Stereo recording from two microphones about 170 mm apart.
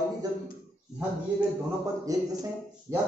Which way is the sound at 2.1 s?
20° right (ahead or behind).